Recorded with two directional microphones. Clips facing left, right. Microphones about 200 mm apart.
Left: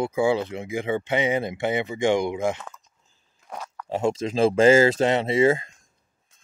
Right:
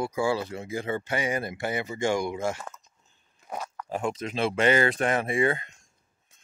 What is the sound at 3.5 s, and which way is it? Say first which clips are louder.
Chewing: right 1 dB; 10° right (ahead or behind).